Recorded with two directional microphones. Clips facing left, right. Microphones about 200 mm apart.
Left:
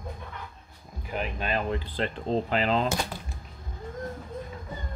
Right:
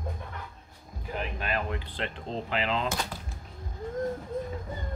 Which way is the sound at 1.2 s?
25° left (ahead or behind).